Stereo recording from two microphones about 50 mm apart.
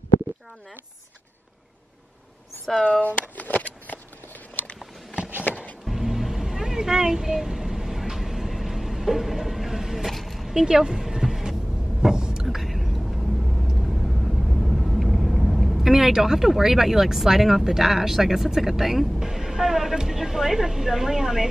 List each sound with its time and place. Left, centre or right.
2.7 s speech: centre
3.0 s a sound: left
5.9 s vehicle: centre
10.5 s a sound: centre
12.0 s whispering: centre
12.4 s whispering: centre
13.8 s vehicle: centre